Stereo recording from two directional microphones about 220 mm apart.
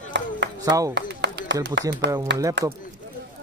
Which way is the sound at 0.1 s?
55° right (ahead or behind).